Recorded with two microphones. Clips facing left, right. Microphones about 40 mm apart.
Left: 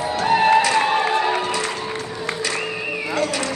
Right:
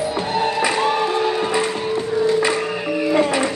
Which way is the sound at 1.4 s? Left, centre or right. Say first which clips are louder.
Right 4 dB; right.